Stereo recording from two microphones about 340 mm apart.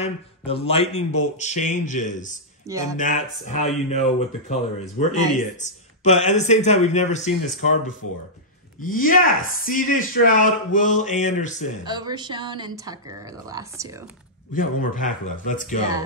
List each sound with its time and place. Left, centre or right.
0.0 s speech: centre
2.7 s speech: centre
3.0 s speech: left
9.0 s speech: left
11.8 s speech: centre
14.5 s speech: left